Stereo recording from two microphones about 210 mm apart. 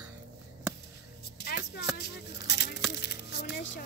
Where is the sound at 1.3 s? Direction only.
50° left (ahead or behind).